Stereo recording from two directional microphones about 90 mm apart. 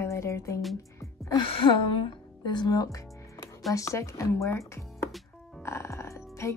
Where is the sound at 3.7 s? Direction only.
35° left (ahead or behind).